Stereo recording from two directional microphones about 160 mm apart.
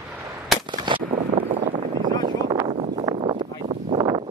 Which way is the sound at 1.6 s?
60° right (ahead or behind).